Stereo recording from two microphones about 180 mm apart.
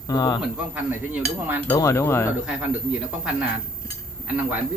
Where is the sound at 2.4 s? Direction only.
5° right (ahead or behind).